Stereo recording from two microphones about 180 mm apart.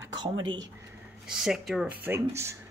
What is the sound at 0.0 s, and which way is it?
Speech, 25° right (ahead or behind).